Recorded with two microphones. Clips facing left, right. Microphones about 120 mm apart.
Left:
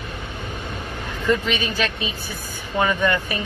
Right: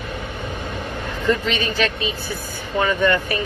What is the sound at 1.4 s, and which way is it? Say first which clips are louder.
Speech: right 2 dB; 15° left (ahead or behind).